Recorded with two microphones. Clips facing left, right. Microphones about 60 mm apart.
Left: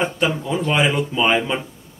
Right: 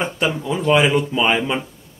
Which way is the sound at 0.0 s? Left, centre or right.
Centre.